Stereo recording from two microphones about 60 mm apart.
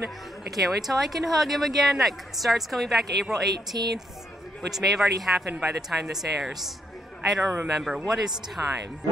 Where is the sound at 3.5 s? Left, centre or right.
Right.